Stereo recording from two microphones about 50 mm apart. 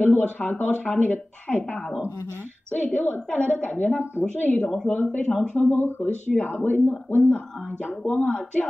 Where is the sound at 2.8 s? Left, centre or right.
Left.